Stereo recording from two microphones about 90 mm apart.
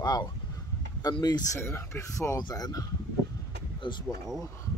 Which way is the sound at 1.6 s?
30° left (ahead or behind).